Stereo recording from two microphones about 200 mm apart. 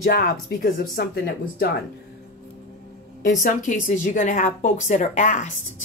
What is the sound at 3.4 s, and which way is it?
A woman's voice, 40° left (ahead or behind).